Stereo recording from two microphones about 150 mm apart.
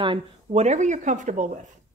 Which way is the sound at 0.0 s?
35° right (ahead or behind).